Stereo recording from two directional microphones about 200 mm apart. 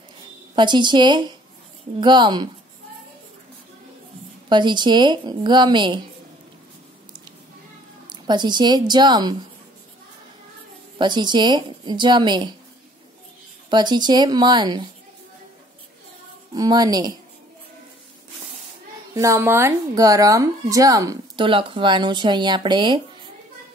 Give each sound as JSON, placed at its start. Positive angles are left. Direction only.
{"t": 0.6, "sound": "speech", "side_deg": -25}
{"t": 4.5, "sound": "speech", "side_deg": -25}
{"t": 8.1, "sound": "speech", "side_deg": -20}
{"t": 11.0, "sound": "speech", "side_deg": -20}
{"t": 13.7, "sound": "speech", "side_deg": -20}
{"t": 16.5, "sound": "speech", "side_deg": -20}
{"t": 19.1, "sound": "speech", "side_deg": -15}